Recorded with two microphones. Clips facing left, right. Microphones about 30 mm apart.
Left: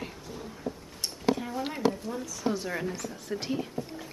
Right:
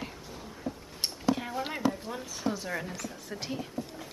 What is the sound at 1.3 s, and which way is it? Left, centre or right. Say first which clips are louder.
Speech: even; centre.